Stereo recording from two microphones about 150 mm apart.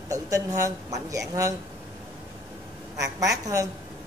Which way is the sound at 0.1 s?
20° right (ahead or behind).